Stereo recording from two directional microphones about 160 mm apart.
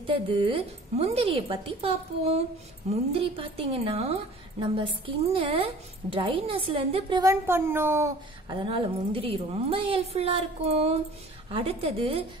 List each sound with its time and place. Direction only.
0.0 s a woman's voice: 30° right (ahead or behind); by 8.1 s 15° right (ahead or behind)
8.5 s a woman's voice: 30° right (ahead or behind)